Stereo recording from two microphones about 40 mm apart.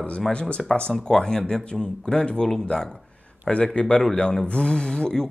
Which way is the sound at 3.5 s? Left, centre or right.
Left.